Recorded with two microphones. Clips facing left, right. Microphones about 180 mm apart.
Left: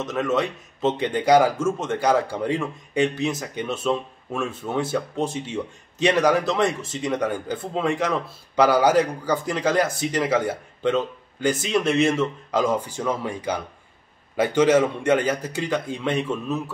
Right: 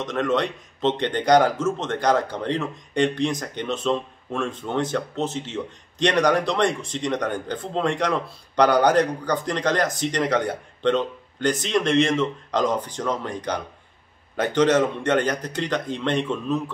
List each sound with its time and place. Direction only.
0.0 s speech: 5° left (ahead or behind)